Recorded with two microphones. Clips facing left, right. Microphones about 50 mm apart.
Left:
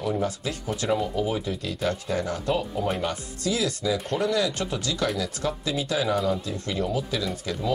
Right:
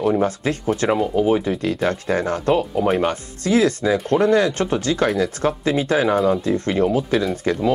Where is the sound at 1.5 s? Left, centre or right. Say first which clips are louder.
Right 7 dB; right.